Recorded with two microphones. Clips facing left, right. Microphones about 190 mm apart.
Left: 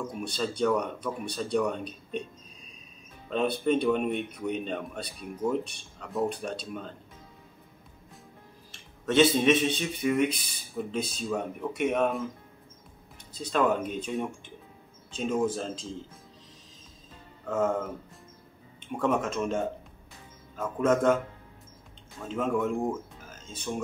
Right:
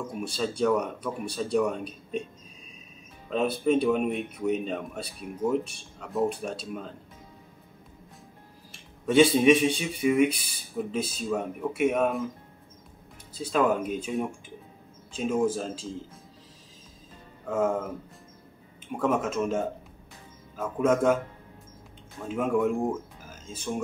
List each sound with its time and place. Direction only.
0.2 s speech: 5° right (ahead or behind)
3.3 s a man's voice: 5° right (ahead or behind)
8.7 s a man's voice: 10° right (ahead or behind)
13.4 s a man's voice: 5° right (ahead or behind)
17.5 s speech: 10° right (ahead or behind)
18.9 s a man's voice: 5° right (ahead or behind)
22.2 s speech: 10° right (ahead or behind)